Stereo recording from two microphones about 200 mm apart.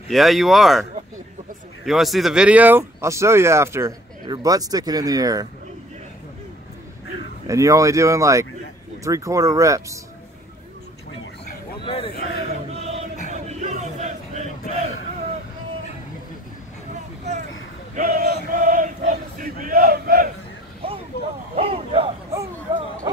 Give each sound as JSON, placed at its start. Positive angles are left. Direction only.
{"t": 0.1, "sound": "speech", "side_deg": 0}
{"t": 1.9, "sound": "speech", "side_deg": 0}
{"t": 7.4, "sound": "speech", "side_deg": -15}
{"t": 11.8, "sound": "a sound", "side_deg": 30}
{"t": 12.1, "sound": "speech", "side_deg": 55}
{"t": 13.3, "sound": "a sound", "side_deg": -35}
{"t": 17.9, "sound": "male singing", "side_deg": -45}
{"t": 20.8, "sound": "vehicle", "side_deg": -25}
{"t": 21.5, "sound": "a sound", "side_deg": -30}